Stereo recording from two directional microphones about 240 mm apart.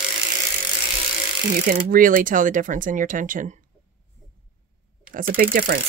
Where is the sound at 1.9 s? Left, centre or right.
Right.